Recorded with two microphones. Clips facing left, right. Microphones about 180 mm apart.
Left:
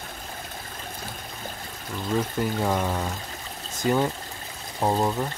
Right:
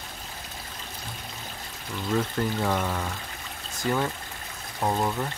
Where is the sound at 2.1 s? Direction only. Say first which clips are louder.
Left 1 dB; 15° left (ahead or behind).